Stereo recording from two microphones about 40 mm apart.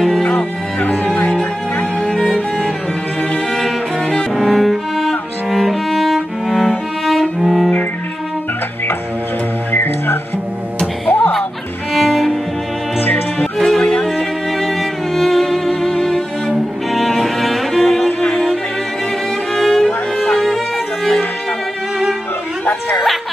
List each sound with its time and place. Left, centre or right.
0.3 s music: left
4.0 s cello: centre
4.4 s cello: centre
9.7 s music: left
11.1 s music: left
11.9 s music: centre
13.4 s music: centre
19.5 s music: centre